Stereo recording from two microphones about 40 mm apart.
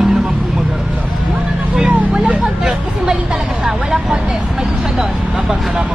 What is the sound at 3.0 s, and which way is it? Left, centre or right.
Vehicle, centre.